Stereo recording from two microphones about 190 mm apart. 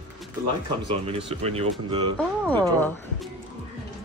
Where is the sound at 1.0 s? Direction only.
30° right (ahead or behind).